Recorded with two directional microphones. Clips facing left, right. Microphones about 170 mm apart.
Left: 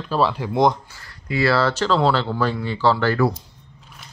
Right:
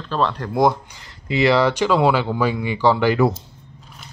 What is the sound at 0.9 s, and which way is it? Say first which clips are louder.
Speech: right 2 dB; 20° right (ahead or behind).